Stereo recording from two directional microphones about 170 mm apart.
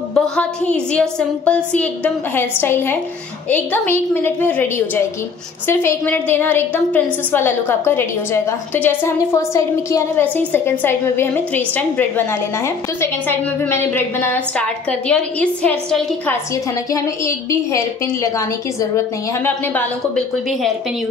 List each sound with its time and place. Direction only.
0.1 s a woman's voice: 5° left (ahead or behind)
16.9 s a woman's voice: 15° left (ahead or behind)